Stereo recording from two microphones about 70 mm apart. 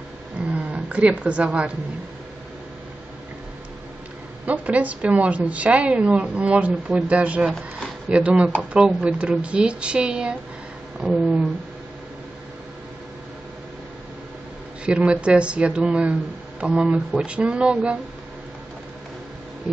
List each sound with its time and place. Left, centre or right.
0.4 s a sound: centre
4.5 s a woman's voice: right
14.9 s speech: centre